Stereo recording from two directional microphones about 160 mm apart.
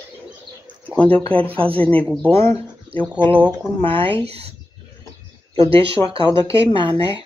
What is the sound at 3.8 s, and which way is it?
Speech, 35° right (ahead or behind).